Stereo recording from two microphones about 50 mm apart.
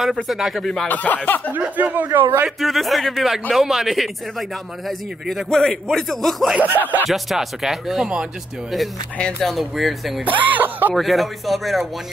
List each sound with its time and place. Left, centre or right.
0.0 s a man's voice: centre
0.8 s speech: left
1.8 s speech: right
2.6 s a man's voice: centre
6.6 s speech: right
7.1 s a man's voice: centre
9.4 s a man's voice: centre
10.2 s speech: right
11.0 s a man's voice: centre